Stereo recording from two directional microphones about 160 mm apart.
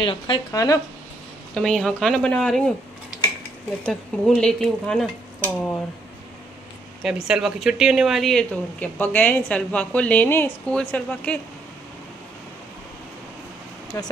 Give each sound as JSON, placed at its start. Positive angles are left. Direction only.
{"t": 0.0, "sound": "a woman's voice", "side_deg": 30}
{"t": 1.5, "sound": "stir", "side_deg": 0}
{"t": 3.8, "sound": "stir", "side_deg": 5}
{"t": 7.0, "sound": "speech", "side_deg": -5}
{"t": 13.9, "sound": "speech", "side_deg": 20}